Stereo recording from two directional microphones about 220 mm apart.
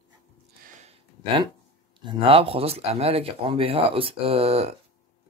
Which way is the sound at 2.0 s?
20° right (ahead or behind).